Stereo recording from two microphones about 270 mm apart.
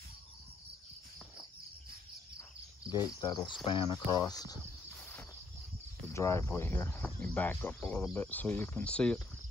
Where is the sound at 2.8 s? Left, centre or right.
Centre.